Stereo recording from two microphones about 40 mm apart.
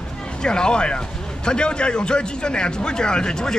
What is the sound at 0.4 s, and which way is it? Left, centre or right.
Speech, left.